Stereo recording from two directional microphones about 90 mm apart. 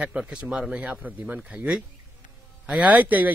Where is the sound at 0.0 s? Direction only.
10° right (ahead or behind).